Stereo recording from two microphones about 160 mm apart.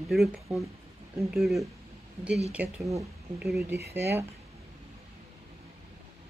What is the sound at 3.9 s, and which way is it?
Speech, 15° right (ahead or behind).